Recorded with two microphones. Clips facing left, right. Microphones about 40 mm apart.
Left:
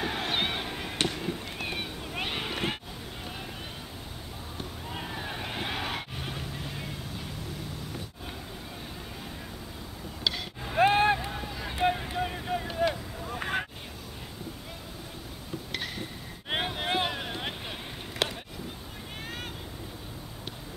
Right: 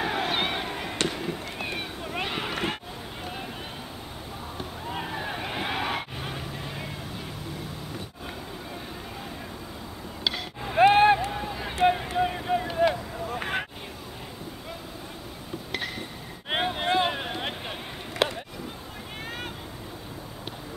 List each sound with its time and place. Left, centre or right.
0.0 s chop: centre
1.1 s run: centre
4.6 s vehicle: centre
10.2 s vehicle: centre
10.8 s vehicle: right
13.3 s a sound: right
16.4 s boat: centre
18.2 s a sound: centre